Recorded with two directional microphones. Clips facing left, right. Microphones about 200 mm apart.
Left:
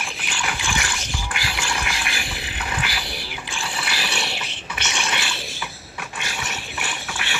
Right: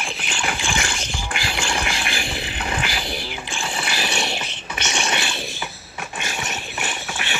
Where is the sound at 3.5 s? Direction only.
25° right (ahead or behind).